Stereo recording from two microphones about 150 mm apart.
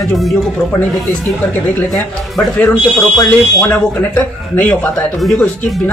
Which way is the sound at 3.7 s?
10° left (ahead or behind).